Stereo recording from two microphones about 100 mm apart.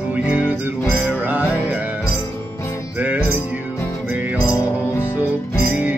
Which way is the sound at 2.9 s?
15° right (ahead or behind).